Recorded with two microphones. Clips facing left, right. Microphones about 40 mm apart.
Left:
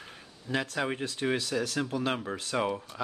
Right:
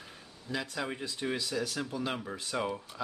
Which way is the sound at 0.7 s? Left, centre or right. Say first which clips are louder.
Left 5 dB; left.